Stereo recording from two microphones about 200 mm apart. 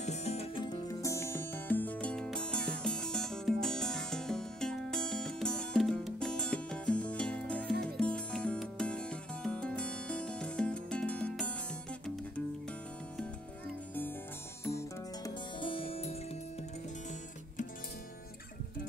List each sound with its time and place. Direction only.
0.0 s music: 35° left (ahead or behind); by 11.5 s 5° left (ahead or behind)
14.6 s music: 15° left (ahead or behind)
15.6 s music: 25° left (ahead or behind)